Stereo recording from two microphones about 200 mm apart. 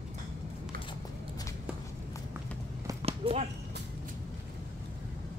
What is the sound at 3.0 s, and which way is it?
Basketball bounce, 30° right (ahead or behind).